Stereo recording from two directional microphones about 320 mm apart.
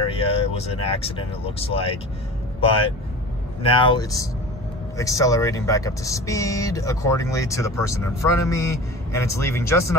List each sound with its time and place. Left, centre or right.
0.1 s speech: centre
3.6 s speech: centre